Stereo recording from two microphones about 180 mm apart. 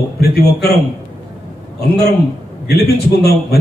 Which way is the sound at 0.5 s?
60° left (ahead or behind).